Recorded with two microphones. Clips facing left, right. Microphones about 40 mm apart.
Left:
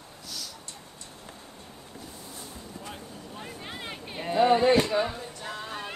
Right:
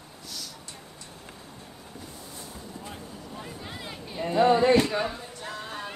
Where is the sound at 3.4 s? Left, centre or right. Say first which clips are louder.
Left 1 dB; left.